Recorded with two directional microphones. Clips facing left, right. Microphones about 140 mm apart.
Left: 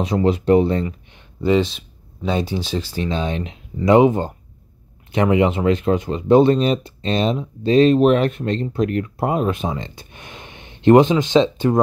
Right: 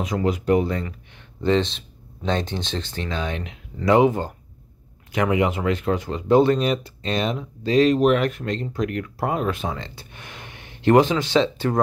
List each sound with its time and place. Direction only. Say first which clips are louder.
0.0 s speech: left 5 dB; 30° left (ahead or behind)
1.4 s speech: left 3 dB; 5° left (ahead or behind)
3.1 s speech: left 3 dB; 20° left (ahead or behind)